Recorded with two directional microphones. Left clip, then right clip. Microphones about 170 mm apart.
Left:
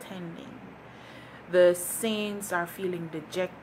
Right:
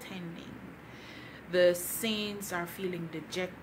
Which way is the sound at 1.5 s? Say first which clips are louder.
Left 5 dB; centre (ahead or behind).